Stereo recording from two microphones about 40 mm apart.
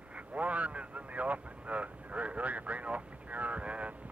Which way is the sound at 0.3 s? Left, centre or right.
Right.